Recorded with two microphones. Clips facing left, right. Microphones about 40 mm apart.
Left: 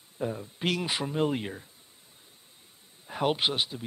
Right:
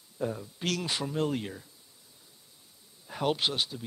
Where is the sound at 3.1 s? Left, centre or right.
Left.